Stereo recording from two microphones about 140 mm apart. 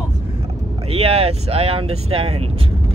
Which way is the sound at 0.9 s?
45° right (ahead or behind).